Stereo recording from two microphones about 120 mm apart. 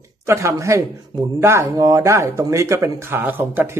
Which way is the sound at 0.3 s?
25° right (ahead or behind).